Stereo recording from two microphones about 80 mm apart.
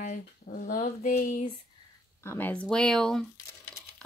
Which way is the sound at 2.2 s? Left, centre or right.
Left.